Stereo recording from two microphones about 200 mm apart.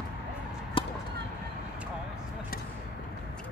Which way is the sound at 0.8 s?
25° left (ahead or behind).